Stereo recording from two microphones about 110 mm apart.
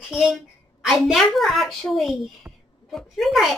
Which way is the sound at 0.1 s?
5° right (ahead or behind).